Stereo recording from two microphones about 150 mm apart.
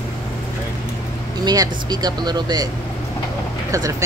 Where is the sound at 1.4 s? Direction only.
25° right (ahead or behind).